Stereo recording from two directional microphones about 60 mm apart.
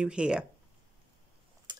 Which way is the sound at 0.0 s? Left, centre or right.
Centre.